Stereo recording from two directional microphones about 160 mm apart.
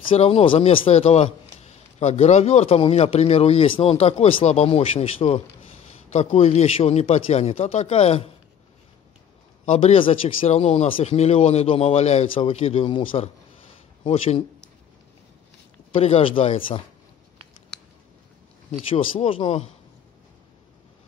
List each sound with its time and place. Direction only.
0.1 s a man's voice: 35° left (ahead or behind)
9.7 s a man's voice: 40° left (ahead or behind)
14.0 s a man's voice: 40° left (ahead or behind)
15.9 s a man's voice: 35° left (ahead or behind)
18.7 s a man's voice: 35° left (ahead or behind)